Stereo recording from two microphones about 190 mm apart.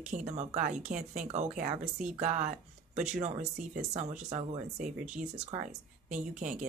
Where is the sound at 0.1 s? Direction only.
40° right (ahead or behind).